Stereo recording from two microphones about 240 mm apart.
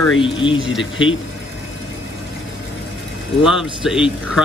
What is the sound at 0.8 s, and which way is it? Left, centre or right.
Speech, left.